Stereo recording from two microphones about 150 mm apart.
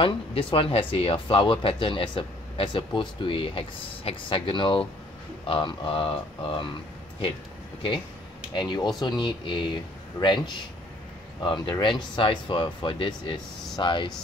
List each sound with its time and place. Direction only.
0.0 s speech: 35° left (ahead or behind)
8.5 s speech: 30° left (ahead or behind)